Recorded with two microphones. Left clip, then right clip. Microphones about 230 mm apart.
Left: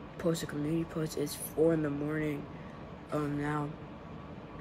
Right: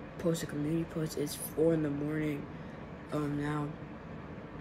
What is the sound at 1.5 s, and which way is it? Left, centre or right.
Speech, centre.